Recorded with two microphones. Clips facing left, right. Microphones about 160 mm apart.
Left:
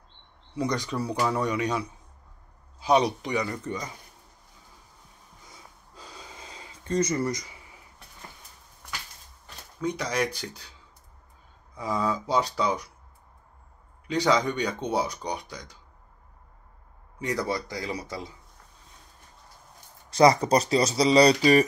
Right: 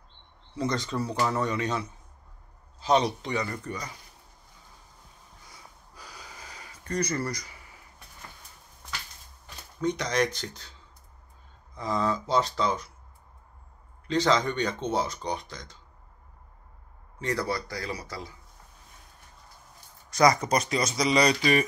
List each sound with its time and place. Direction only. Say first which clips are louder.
0.6 s speech: left 1 dB; 15° left (ahead or behind)
5.5 s gasp: left 1 dB; 25° left (ahead or behind)
9.8 s speech: right 1 dB; 5° left (ahead or behind)
11.7 s speech: even; 10° left (ahead or behind)
14.0 s speech: left 1 dB; 10° left (ahead or behind)
17.2 s a man's voice: left 1 dB; 15° left (ahead or behind)
20.1 s speech: left 3 dB; 30° left (ahead or behind)